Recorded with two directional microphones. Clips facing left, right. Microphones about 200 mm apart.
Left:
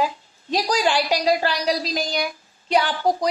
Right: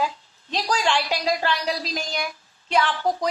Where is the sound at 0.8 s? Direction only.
35° left (ahead or behind).